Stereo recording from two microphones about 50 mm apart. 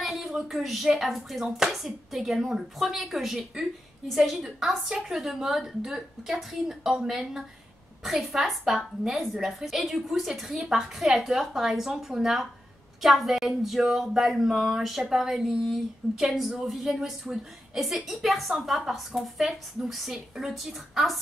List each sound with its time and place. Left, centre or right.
0.0 s a woman's voice: centre
4.8 s a woman's voice: centre